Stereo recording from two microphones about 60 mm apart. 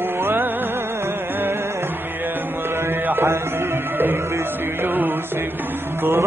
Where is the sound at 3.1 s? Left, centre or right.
Right.